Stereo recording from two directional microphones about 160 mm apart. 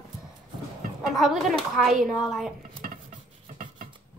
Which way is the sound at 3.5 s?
60° right (ahead or behind).